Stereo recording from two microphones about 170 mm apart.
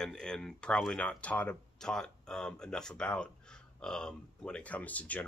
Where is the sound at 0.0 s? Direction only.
5° left (ahead or behind).